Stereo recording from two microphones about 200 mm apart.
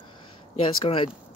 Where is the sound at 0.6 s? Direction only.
25° left (ahead or behind).